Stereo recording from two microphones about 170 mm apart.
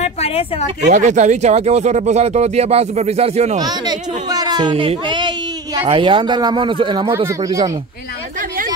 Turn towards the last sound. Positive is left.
turn(degrees=-15)  # may be behind; listen again after turning